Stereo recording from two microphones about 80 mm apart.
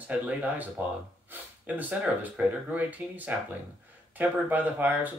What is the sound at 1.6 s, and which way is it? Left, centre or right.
Speech, right.